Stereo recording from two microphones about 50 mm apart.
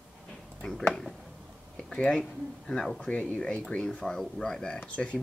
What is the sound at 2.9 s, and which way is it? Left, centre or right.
Speech, left.